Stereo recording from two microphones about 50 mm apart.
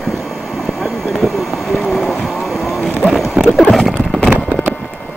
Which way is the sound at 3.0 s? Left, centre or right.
Centre.